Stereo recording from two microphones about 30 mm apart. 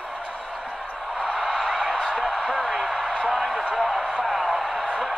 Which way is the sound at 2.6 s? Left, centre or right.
Centre.